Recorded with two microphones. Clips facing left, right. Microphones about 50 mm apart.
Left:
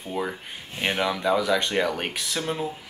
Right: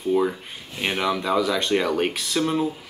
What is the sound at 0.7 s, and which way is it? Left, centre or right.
Speech, left.